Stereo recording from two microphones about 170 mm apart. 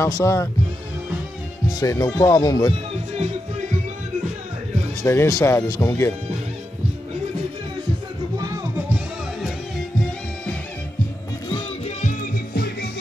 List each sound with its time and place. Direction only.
0.0 s speech: 15° left (ahead or behind)
1.8 s speech: 20° left (ahead or behind)
3.2 s music: 50° right (ahead or behind)
5.0 s speech: 15° left (ahead or behind)
12.5 s music: 70° left (ahead or behind)